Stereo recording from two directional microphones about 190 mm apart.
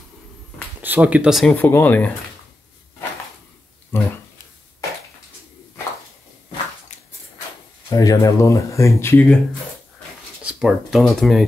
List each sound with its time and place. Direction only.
0.8 s speech: 10° right (ahead or behind); by 2.1 s 10° left (ahead or behind)
3.9 s a sound: 10° left (ahead or behind)
7.9 s speech: 20° left (ahead or behind)
10.4 s speech: centre (ahead or behind)